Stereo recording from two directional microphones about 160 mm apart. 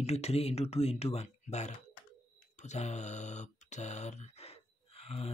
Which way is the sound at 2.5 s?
45° left (ahead or behind).